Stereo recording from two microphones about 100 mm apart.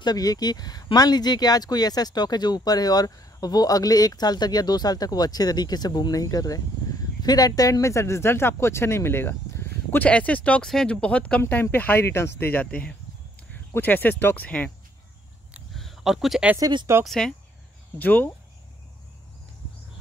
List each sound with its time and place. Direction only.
0.0 s speech: 40° left (ahead or behind); by 14.7 s 15° left (ahead or behind)
15.7 s a sound: centre (ahead or behind)
17.0 s speech: 5° left (ahead or behind)
17.9 s speech: 15° left (ahead or behind)